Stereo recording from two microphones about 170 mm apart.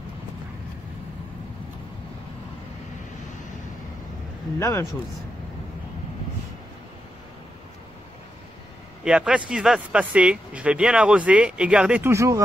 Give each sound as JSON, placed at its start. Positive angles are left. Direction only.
{"t": 4.6, "sound": "speech", "side_deg": 20}
{"t": 9.0, "sound": "speech", "side_deg": -5}